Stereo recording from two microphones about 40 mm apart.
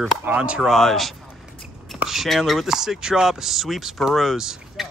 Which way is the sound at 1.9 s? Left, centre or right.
Centre.